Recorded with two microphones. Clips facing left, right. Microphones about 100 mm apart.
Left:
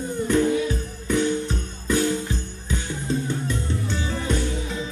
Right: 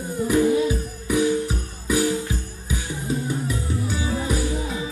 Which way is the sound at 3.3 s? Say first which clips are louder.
Right 1 dB; 5° right (ahead or behind).